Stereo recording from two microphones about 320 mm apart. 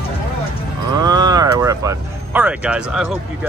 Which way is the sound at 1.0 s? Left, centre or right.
Centre.